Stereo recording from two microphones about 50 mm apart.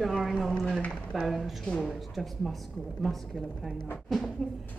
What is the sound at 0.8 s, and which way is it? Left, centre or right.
Speech, left.